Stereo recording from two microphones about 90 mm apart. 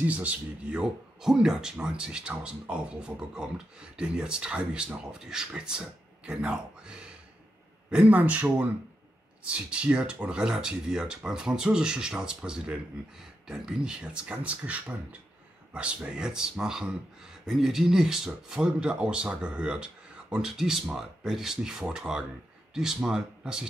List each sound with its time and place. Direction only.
0.0 s speech: 15° right (ahead or behind)